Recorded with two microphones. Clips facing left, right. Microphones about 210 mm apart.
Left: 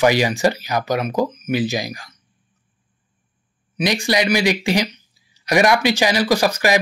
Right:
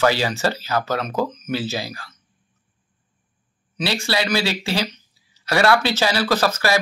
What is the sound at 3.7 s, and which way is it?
Speech, 15° left (ahead or behind).